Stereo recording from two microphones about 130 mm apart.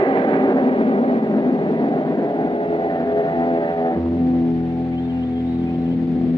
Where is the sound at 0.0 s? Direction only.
35° left (ahead or behind).